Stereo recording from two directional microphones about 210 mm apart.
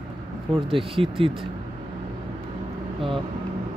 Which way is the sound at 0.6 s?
25° right (ahead or behind).